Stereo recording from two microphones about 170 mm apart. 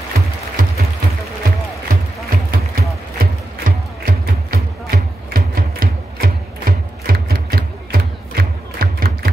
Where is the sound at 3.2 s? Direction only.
60° right (ahead or behind).